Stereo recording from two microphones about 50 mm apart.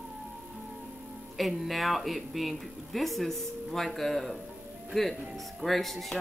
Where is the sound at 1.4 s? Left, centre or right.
Centre.